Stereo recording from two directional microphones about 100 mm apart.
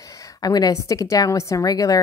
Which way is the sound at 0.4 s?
40° left (ahead or behind).